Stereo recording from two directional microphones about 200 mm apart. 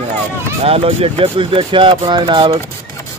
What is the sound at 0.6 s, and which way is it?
Speech, 30° right (ahead or behind).